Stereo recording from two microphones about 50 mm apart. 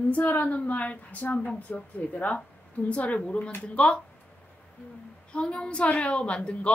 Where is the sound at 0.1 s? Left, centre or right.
Left.